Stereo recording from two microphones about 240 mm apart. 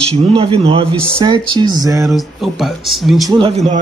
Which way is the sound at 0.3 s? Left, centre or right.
Right.